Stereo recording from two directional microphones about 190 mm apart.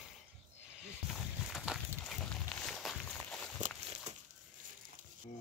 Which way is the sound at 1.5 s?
Centre (ahead or behind).